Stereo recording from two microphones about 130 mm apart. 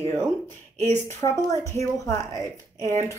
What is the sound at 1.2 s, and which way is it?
A woman's voice, 25° left (ahead or behind).